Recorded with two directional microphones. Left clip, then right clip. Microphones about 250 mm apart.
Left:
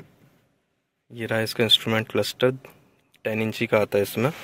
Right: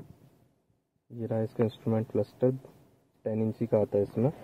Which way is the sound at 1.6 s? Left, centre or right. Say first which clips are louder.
Left 14 dB; left.